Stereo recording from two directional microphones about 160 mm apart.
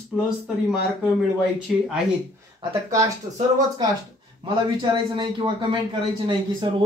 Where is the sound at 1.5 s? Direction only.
Centre (ahead or behind).